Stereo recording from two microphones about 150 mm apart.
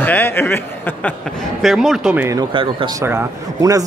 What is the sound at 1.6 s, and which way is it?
Speech, centre (ahead or behind).